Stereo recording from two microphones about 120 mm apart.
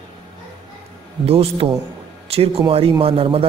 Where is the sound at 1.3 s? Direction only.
55° right (ahead or behind).